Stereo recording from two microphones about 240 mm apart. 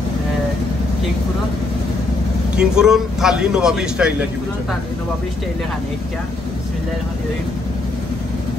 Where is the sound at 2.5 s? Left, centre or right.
Centre.